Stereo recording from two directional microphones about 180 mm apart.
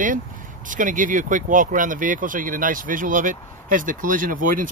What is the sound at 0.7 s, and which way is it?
Speech, 45° right (ahead or behind).